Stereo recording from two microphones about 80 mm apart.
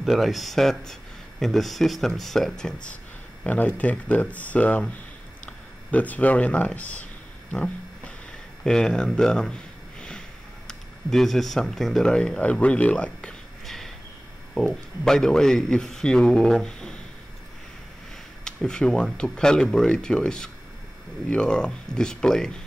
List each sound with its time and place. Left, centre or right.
0.0 s speech: centre
3.4 s speech: centre
7.5 s a sound: centre
8.6 s speech: centre
13.7 s a sound: centre
14.5 s a man's voice: centre
18.4 s a man's voice: centre